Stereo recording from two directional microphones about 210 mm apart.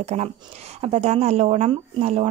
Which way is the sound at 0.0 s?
30° right (ahead or behind).